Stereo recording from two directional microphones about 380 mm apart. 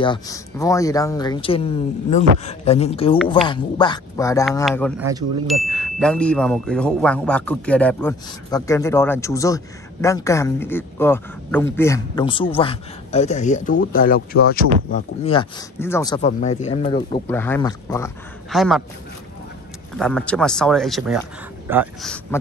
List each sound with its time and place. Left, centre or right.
0.0 s speech: centre
20.0 s speech: centre